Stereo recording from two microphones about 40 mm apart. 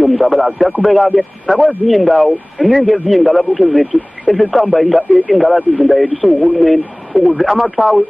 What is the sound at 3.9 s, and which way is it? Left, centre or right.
Speech, left.